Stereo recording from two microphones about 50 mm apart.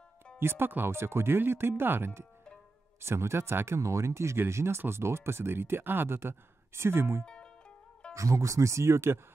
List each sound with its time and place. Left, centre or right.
0.4 s speech: right
3.0 s speech: right
7.2 s music: centre
8.1 s speech: right